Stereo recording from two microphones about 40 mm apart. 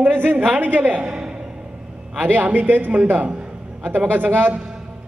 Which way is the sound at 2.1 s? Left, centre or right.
Right.